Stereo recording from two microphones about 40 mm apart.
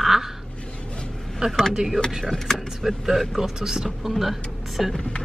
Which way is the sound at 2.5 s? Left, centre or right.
Centre.